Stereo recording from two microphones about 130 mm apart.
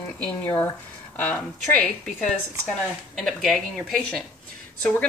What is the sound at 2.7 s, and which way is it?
Speech, centre (ahead or behind).